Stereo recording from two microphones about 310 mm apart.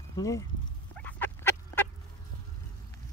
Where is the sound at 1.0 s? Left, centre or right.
Centre.